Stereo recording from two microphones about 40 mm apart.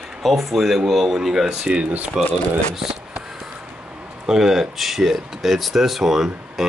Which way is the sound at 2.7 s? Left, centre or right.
Centre.